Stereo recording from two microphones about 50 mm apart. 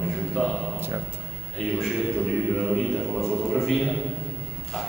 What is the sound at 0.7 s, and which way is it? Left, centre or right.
Speech, right.